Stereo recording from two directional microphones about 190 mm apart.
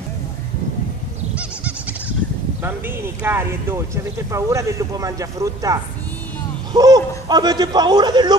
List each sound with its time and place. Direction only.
3.2 s a man's voice: 15° right (ahead or behind)